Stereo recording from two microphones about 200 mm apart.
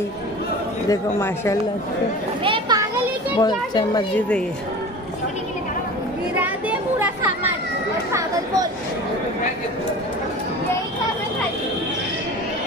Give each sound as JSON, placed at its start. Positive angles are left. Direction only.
{"t": 0.8, "sound": "speech", "side_deg": 15}
{"t": 2.4, "sound": "children playing", "side_deg": -20}
{"t": 3.3, "sound": "a child's voice", "side_deg": 20}
{"t": 6.3, "sound": "a sound", "side_deg": -10}
{"t": 8.1, "sound": "chatter", "side_deg": -15}